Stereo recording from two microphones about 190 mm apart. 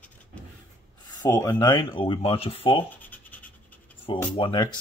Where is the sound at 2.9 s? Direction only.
10° left (ahead or behind).